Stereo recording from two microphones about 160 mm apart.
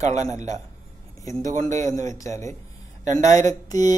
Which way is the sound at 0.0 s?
45° right (ahead or behind).